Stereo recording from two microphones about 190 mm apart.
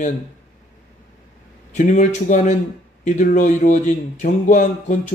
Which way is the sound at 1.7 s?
40° left (ahead or behind).